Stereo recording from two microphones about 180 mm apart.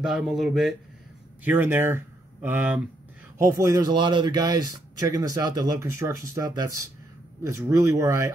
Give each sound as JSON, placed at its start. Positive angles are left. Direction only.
{"t": 0.0, "sound": "speech", "side_deg": -5}
{"t": 1.4, "sound": "speech", "side_deg": -10}